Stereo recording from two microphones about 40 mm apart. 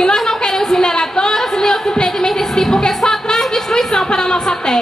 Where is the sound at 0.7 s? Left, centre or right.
Centre.